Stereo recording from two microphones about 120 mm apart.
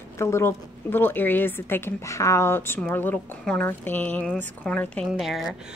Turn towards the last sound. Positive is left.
turn(degrees=0)  # may be behind; listen again after turning